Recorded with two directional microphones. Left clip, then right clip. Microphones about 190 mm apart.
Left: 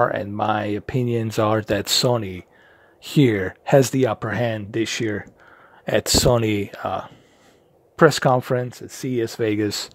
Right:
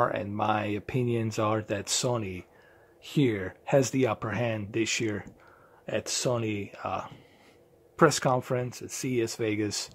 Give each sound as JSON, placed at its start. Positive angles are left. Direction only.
{"t": 0.0, "sound": "speech", "side_deg": 30}
{"t": 5.9, "sound": "speech", "side_deg": 40}